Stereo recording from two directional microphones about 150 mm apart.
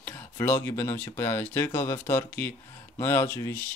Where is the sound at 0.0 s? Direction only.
15° left (ahead or behind).